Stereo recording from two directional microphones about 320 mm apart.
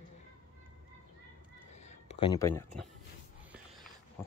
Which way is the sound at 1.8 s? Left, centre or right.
Left.